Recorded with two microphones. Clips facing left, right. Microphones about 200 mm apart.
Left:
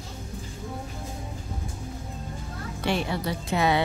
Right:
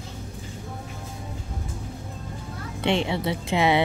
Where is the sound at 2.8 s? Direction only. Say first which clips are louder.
Right 3 dB; 25° right (ahead or behind).